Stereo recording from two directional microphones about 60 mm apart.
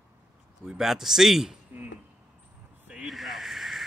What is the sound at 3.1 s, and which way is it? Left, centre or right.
Snake, centre.